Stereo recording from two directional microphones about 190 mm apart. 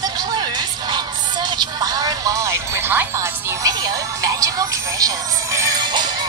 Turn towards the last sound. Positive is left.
turn(degrees=-20)  # may be behind; listen again after turning